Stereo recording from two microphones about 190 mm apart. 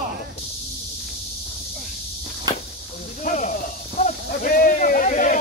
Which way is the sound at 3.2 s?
40° left (ahead or behind).